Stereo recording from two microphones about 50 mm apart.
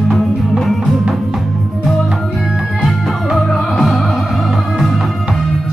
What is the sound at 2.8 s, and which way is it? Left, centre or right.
Music, centre.